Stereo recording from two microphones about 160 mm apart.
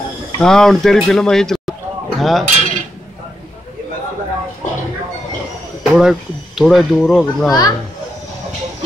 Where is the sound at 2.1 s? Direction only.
Centre (ahead or behind).